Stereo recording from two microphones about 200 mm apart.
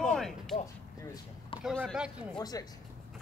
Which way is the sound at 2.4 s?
20° left (ahead or behind).